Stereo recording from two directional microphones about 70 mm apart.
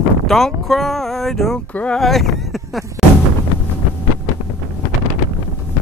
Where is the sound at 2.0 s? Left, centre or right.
Centre.